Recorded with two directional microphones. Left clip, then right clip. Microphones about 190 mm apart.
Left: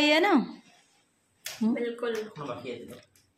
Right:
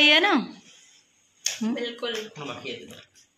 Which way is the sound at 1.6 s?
5° left (ahead or behind).